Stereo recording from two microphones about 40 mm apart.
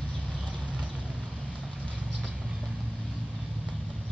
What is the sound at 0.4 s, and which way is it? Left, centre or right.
Vehicle, right.